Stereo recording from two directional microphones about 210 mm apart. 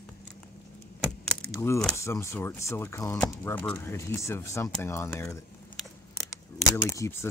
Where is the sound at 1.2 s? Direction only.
5° left (ahead or behind).